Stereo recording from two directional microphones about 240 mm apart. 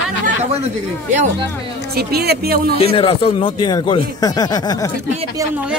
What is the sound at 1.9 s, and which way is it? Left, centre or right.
Speech, right.